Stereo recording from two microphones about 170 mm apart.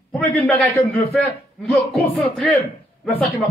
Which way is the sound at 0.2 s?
5° left (ahead or behind).